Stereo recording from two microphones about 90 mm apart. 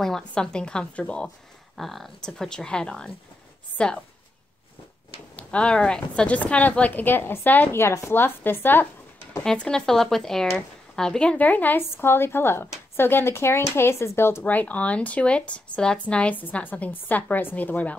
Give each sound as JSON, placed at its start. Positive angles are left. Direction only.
{"t": 0.0, "sound": "speech", "side_deg": 5}
{"t": 1.8, "sound": "a woman's voice", "side_deg": 0}
{"t": 5.3, "sound": "speech", "side_deg": 10}
{"t": 9.4, "sound": "speech", "side_deg": 10}